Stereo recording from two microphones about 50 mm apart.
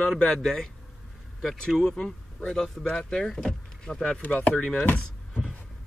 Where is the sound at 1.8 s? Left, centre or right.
Centre.